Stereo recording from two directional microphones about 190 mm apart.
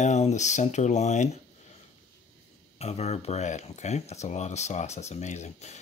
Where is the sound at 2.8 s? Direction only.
35° left (ahead or behind).